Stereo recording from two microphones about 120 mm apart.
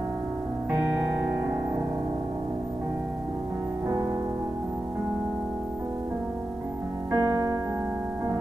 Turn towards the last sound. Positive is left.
turn(degrees=-25)  # may be behind; listen again after turning